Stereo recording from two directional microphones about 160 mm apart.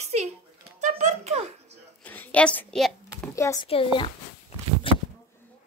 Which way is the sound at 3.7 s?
35° left (ahead or behind).